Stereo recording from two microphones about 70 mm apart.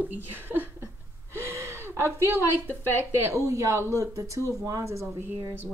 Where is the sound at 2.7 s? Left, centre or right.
Left.